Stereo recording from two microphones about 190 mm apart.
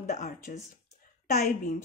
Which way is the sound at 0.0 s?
35° left (ahead or behind).